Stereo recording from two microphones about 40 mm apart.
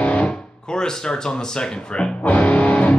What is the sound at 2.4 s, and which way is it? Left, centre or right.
Music, left.